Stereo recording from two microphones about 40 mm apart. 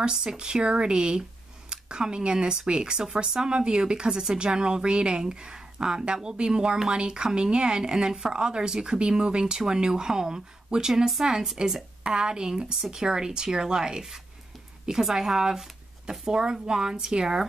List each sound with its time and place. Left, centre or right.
0.0 s speech: centre